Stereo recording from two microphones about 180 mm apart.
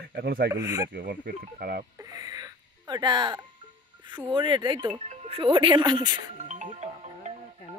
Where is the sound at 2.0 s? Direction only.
20° right (ahead or behind).